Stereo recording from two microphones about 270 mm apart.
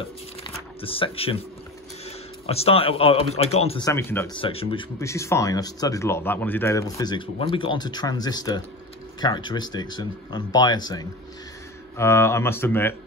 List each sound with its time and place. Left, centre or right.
0.4 s shuffling cards: centre
2.0 s speech: left